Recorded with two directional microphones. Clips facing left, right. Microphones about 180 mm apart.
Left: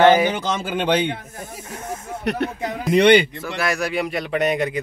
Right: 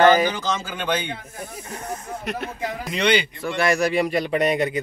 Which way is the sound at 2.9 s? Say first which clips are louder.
Left 8 dB; 60° left (ahead or behind).